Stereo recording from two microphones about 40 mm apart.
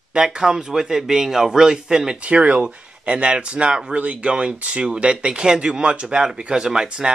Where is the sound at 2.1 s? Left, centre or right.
Right.